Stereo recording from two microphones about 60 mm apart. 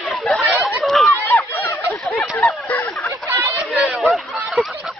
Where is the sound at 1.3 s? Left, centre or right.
Left.